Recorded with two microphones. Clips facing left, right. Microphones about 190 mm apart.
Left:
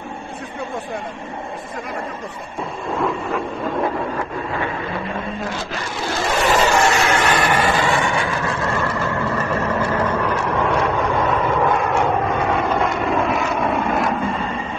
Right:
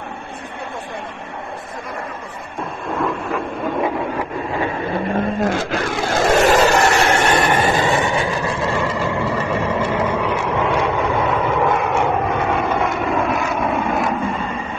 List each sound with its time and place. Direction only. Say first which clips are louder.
3.0 s printer: even; centre (ahead or behind)
5.4 s a sound: right 7 dB; 50° right (ahead or behind); by 7.4 s 25° right (ahead or behind)
7.5 s vehicle: right 1 dB; 20° right (ahead or behind); by 14.1 s centre (ahead or behind)